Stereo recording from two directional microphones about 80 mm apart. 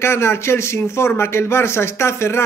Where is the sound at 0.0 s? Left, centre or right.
Left.